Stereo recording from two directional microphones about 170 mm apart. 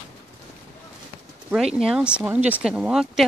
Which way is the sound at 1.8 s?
5° right (ahead or behind).